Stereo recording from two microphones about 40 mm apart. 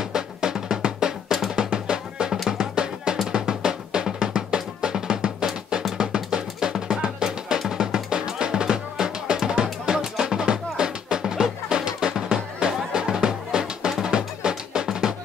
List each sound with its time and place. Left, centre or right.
0.0 s drum: centre
6.1 s music: right